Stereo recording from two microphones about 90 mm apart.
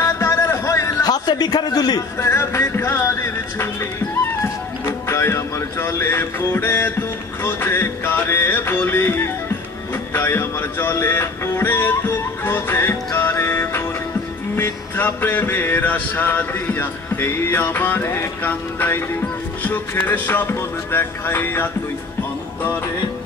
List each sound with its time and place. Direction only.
0.0 s a sound: 30° left (ahead or behind)
1.0 s a man's voice: 50° left (ahead or behind)
2.1 s music: 30° left (ahead or behind)
5.0 s music: 30° left (ahead or behind)
10.1 s speech: 25° left (ahead or behind)
14.6 s music: 25° left (ahead or behind)